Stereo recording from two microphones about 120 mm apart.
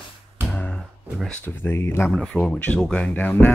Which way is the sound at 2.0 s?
5° left (ahead or behind).